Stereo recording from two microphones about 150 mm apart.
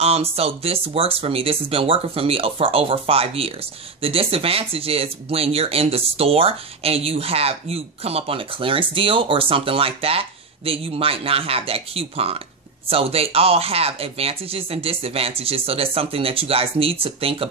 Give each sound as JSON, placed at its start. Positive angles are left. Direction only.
{"t": 0.0, "sound": "speech", "side_deg": -40}